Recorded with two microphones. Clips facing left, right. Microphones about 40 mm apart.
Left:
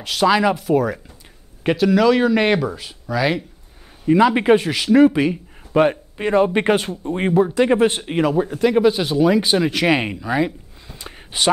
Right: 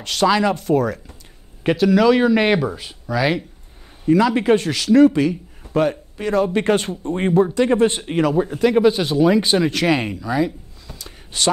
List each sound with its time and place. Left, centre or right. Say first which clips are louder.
0.0 s speech: left 1 dB; centre
4.1 s speech: left 1 dB; left
7.0 s speech: even; centre
7.5 s speech: left 1 dB; centre